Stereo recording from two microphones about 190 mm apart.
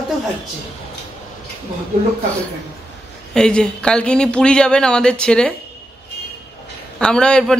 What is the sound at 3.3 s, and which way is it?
Speech, 5° left (ahead or behind).